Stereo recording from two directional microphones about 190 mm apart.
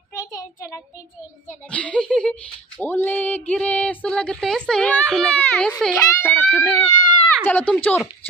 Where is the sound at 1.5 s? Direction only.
5° left (ahead or behind).